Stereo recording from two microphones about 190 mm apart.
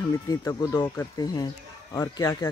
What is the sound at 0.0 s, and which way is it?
Speech, 15° left (ahead or behind).